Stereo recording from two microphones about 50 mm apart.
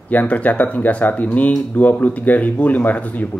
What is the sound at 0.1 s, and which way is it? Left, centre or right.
Speech, left.